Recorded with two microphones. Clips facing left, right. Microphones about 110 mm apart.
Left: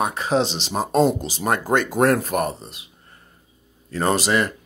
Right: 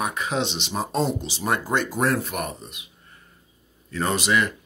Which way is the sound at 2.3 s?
35° left (ahead or behind).